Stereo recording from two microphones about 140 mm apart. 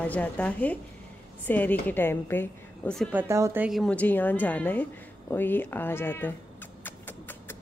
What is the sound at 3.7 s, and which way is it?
A woman's voice, 5° left (ahead or behind).